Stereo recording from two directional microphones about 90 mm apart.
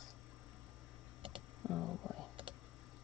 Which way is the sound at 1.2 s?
80° right.